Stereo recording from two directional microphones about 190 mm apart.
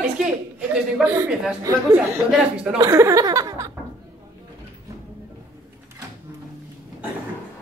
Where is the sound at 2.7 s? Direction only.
20° right (ahead or behind).